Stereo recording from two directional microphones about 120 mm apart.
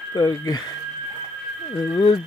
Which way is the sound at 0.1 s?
35° left (ahead or behind).